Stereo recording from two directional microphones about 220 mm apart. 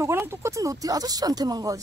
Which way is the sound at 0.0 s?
10° right (ahead or behind).